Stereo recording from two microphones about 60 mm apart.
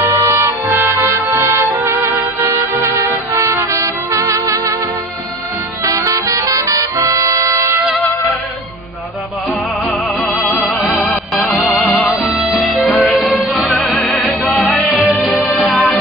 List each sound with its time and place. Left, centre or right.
0.3 s music: right
2.8 s music: right
5.9 s music: right
9.8 s music: centre
11.8 s music: centre